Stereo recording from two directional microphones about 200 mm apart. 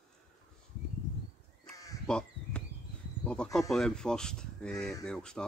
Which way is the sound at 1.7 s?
15° left (ahead or behind).